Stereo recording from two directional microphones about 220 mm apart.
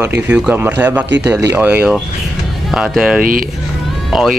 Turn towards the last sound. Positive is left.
turn(degrees=0)  # may be behind; listen again after turning